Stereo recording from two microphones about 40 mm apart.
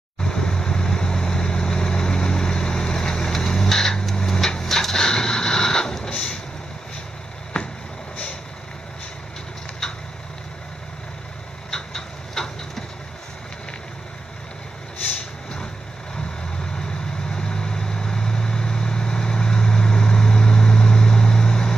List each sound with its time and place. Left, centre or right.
0.2 s vehicle: centre
11.7 s a sound: centre
17.3 s vehicle: centre